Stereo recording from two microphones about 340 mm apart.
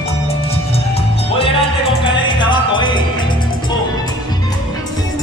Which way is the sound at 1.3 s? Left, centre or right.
Centre.